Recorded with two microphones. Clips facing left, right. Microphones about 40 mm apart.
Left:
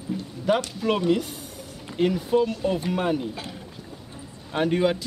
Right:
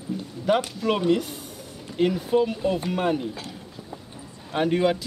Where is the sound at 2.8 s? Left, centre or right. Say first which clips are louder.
Even; centre.